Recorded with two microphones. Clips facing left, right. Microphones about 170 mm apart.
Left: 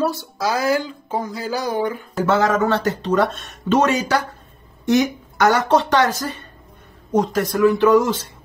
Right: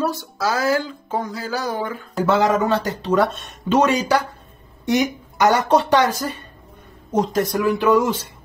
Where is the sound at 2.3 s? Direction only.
10° right (ahead or behind).